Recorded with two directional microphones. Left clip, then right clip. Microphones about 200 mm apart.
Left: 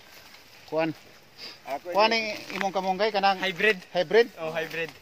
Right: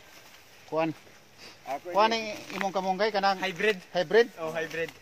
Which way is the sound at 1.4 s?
45° left (ahead or behind).